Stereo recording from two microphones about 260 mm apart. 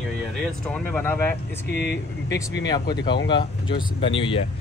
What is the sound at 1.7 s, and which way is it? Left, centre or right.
Speech, left.